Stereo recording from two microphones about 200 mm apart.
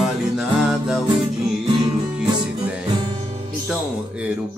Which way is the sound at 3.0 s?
25° right (ahead or behind).